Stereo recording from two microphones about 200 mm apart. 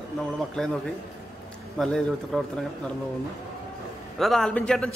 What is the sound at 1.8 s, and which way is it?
Speech, 5° left (ahead or behind).